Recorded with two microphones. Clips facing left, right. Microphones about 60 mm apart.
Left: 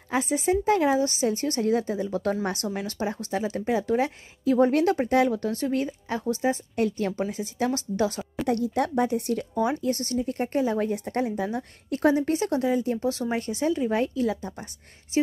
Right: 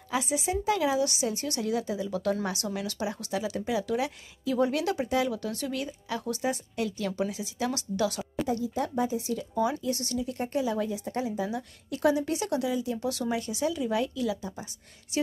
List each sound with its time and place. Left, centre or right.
0.1 s speech: left
8.5 s speech: left